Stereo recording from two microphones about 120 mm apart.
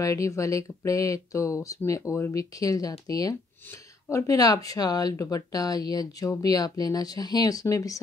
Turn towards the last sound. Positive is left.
turn(degrees=30)  # may be behind; listen again after turning